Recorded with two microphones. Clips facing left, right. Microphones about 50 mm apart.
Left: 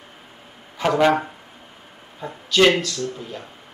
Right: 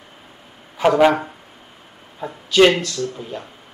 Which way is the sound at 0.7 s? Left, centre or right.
Centre.